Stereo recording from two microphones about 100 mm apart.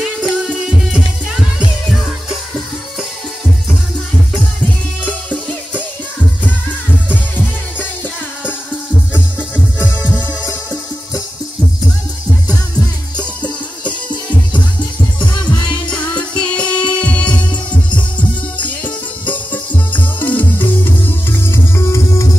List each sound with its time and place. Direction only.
0.0 s music: 5° right (ahead or behind)
15.9 s music: 10° left (ahead or behind)
20.2 s music: 20° left (ahead or behind)